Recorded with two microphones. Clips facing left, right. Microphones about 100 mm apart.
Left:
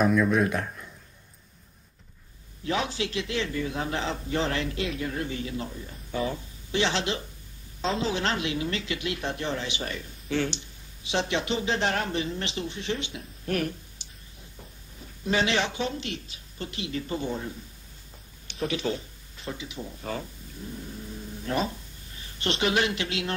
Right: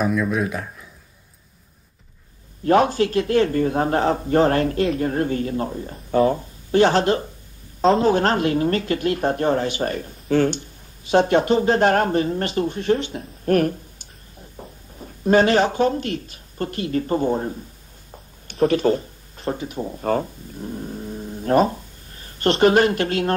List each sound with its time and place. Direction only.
0.0 s speech: centre (ahead or behind)
2.6 s a woman's voice: 50° right (ahead or behind)